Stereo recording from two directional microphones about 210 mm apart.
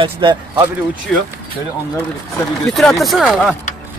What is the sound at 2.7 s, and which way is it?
Speech, centre (ahead or behind).